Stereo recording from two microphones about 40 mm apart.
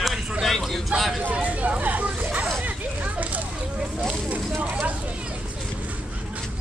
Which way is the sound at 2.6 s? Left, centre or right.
Right.